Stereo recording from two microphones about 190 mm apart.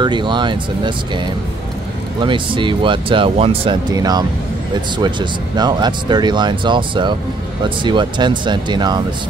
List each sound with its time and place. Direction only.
0.0 s speech: 25° right (ahead or behind)
2.2 s speech: 25° right (ahead or behind)